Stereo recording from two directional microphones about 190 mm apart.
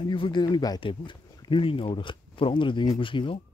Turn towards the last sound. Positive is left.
turn(degrees=25)  # may be behind; listen again after turning